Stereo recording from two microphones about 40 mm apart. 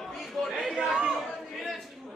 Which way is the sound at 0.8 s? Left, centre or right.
Centre.